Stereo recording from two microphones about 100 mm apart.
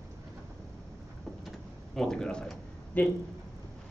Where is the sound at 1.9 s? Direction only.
5° left (ahead or behind).